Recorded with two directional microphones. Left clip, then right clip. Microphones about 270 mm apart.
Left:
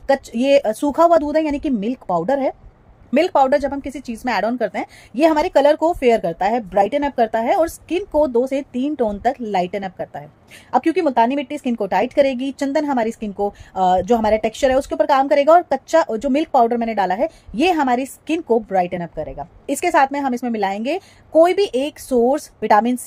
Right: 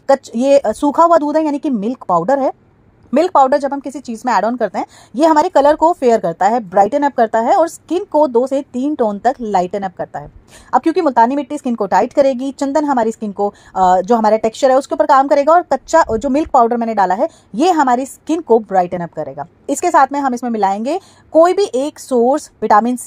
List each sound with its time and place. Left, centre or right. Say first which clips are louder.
0.0 s a woman's voice: right 5 dB; centre